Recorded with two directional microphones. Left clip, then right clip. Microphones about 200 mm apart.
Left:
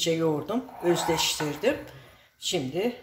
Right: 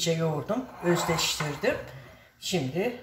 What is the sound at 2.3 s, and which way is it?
Speech, 50° left (ahead or behind).